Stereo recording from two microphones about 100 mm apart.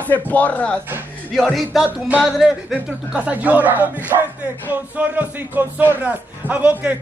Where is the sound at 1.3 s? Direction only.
Centre (ahead or behind).